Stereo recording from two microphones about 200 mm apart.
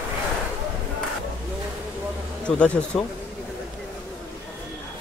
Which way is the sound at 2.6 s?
5° left (ahead or behind).